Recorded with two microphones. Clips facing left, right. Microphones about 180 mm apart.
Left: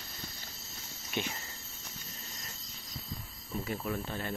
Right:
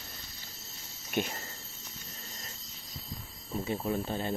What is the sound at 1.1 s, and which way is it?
Speech, 45° right (ahead or behind).